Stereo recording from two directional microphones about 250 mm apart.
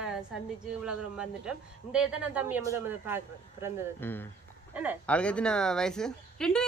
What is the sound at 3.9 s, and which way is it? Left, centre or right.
Speech, centre.